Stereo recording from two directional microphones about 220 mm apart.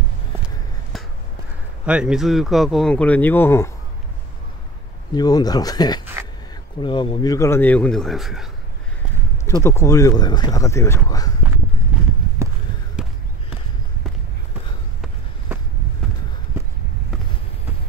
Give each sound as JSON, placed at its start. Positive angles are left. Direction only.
{"t": 0.9, "sound": "crow", "side_deg": 0}
{"t": 1.9, "sound": "speech", "side_deg": -5}
{"t": 5.1, "sound": "speech", "side_deg": 15}
{"t": 9.5, "sound": "speech", "side_deg": 10}
{"t": 13.0, "sound": "a sound", "side_deg": -5}